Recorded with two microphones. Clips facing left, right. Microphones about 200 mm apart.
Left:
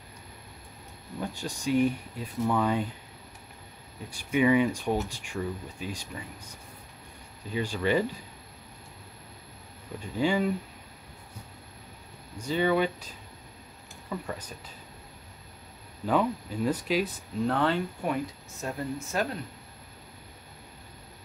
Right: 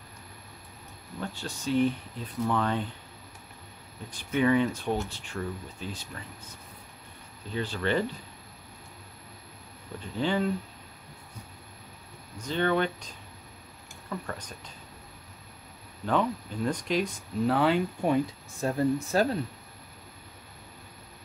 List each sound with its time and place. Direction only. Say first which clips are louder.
1.2 s speech: left 2 dB; 15° left (ahead or behind)
4.1 s speech: left 1 dB; 10° left (ahead or behind)
7.5 s speech: left 2 dB; 10° left (ahead or behind)
9.9 s speech: left 2 dB; 10° left (ahead or behind)
12.4 s speech: left 1 dB; 10° left (ahead or behind)
16.1 s speech: left 1 dB; 5° left (ahead or behind)
17.5 s speech: right 2 dB; 10° right (ahead or behind)
18.6 s speech: right 7 dB; 35° right (ahead or behind)